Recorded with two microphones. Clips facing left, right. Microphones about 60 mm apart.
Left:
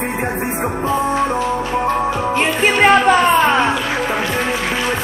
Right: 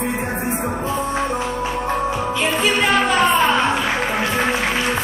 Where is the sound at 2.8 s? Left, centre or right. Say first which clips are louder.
Left 9 dB; left.